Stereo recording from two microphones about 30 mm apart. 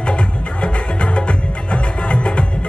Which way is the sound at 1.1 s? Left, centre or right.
Left.